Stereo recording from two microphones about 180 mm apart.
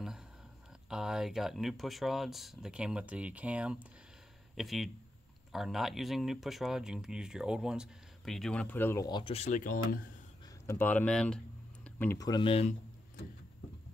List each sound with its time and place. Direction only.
0.8 s speech: 5° right (ahead or behind)
9.0 s speech: 30° left (ahead or behind); by 9.9 s 50° left (ahead or behind)
10.7 s speech: 10° left (ahead or behind); by 12.7 s 30° left (ahead or behind)